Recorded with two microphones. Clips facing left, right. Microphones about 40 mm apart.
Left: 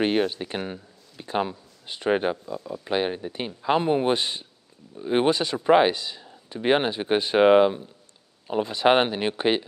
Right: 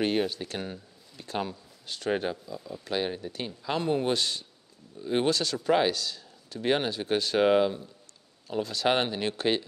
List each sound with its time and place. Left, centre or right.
0.0 s speech: left